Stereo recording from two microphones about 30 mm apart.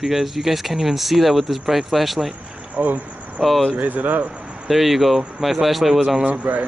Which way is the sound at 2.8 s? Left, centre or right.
Right.